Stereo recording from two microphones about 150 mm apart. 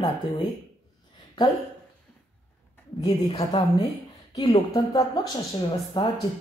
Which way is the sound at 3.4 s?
45° left (ahead or behind).